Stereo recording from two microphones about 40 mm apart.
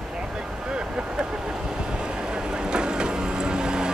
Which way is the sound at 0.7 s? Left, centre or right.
Right.